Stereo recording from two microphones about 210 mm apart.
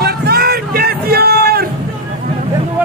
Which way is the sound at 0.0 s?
50° right (ahead or behind).